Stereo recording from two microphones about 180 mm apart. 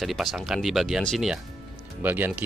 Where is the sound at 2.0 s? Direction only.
10° right (ahead or behind).